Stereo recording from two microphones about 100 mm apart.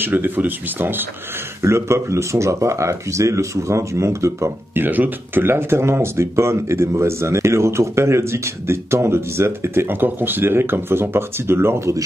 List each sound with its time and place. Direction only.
0.0 s speech: 20° right (ahead or behind)